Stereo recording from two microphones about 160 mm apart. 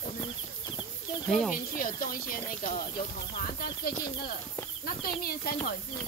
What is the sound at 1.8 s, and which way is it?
Speech, 60° left (ahead or behind).